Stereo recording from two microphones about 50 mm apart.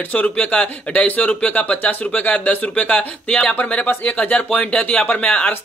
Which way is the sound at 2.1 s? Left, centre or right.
Left.